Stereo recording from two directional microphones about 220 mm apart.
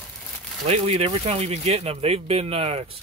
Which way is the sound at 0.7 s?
25° right (ahead or behind).